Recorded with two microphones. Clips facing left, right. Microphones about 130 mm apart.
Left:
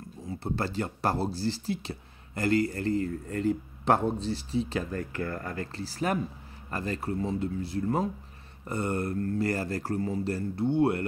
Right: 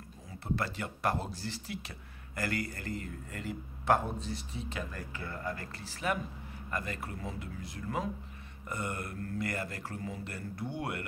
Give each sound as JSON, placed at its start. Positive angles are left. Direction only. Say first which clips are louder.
{"t": 0.3, "sound": "speech", "louder": "left 4 dB", "side_deg": 30}
{"t": 4.9, "sound": "speech", "louder": "left 10 dB", "side_deg": 55}
{"t": 5.3, "sound": "speech", "louder": "left 4 dB", "side_deg": 40}